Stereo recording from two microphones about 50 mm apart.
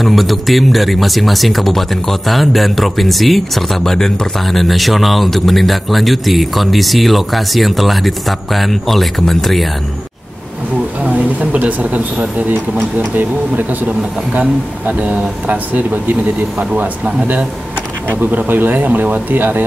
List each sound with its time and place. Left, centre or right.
0.0 s speech: centre
11.1 s speech: right
18.2 s speech: right